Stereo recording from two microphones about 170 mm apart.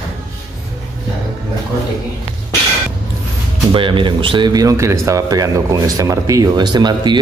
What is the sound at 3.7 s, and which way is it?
Speech, 30° right (ahead or behind).